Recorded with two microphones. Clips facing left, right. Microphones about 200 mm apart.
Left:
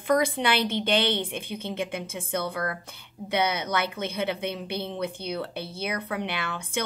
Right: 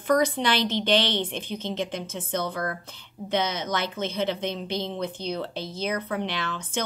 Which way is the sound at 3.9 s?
10° left (ahead or behind).